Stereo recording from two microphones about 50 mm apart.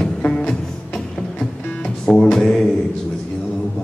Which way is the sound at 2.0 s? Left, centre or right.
Centre.